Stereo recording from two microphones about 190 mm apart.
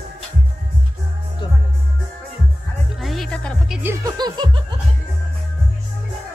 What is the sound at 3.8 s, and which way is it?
Music, 15° right (ahead or behind).